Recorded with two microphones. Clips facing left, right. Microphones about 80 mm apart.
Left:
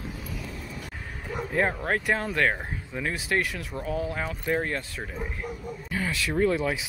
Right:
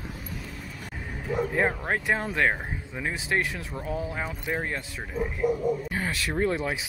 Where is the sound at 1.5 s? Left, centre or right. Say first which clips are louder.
Left 4 dB; centre.